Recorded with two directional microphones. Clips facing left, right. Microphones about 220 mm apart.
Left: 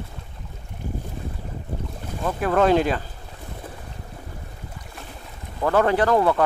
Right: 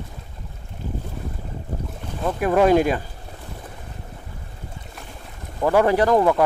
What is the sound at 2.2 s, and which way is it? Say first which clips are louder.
Speech: right 2 dB; 10° right (ahead or behind).